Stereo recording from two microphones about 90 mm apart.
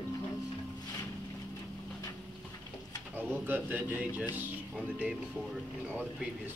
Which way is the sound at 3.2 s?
20° right (ahead or behind).